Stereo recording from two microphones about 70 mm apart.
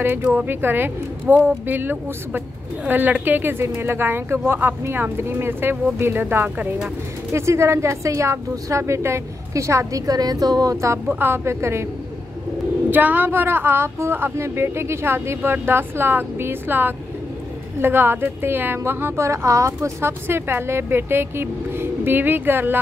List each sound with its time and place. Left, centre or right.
0.0 s a woman's voice: right
7.3 s a woman's voice: right
11.1 s a woman's voice: right
12.9 s a woman's voice: right